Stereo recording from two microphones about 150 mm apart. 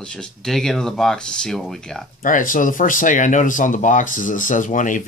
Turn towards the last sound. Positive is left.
turn(degrees=60)  # may be behind; listen again after turning